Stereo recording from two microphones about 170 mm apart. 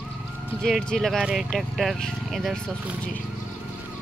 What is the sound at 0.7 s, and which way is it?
Speech, centre (ahead or behind).